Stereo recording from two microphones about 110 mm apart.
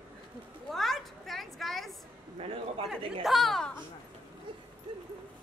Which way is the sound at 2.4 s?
65° right (ahead or behind).